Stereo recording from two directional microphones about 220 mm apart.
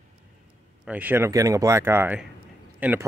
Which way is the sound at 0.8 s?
5° right (ahead or behind).